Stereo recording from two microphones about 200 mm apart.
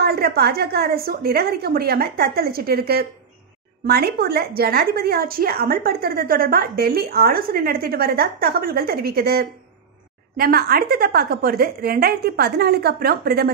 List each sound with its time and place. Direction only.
0.0 s a woman's voice: 50° right (ahead or behind)